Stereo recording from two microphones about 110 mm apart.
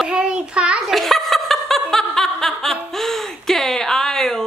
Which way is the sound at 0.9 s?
Centre (ahead or behind).